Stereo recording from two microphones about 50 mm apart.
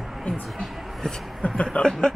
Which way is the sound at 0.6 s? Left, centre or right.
Centre.